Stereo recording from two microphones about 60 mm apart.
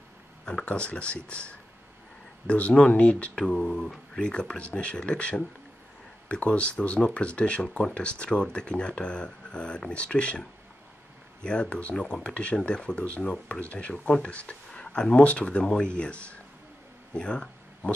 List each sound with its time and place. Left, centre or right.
0.5 s speech: centre
11.4 s speech: centre
17.1 s a sound: centre